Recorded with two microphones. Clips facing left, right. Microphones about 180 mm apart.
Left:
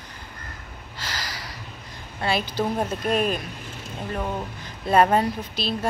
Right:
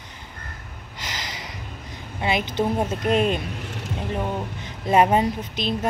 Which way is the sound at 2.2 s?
20° right (ahead or behind).